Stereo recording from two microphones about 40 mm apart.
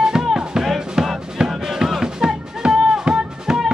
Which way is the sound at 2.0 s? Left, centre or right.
Centre.